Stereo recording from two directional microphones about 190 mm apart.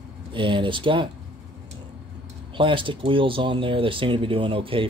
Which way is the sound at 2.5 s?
25° right (ahead or behind).